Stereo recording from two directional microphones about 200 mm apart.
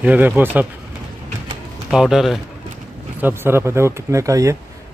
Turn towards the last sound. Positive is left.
turn(degrees=-15)  # may be behind; listen again after turning